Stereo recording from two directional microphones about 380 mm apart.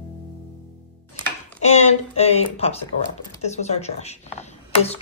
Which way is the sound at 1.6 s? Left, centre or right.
Centre.